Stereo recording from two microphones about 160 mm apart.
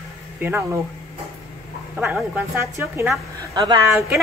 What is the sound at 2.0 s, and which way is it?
A woman's voice, 10° right (ahead or behind).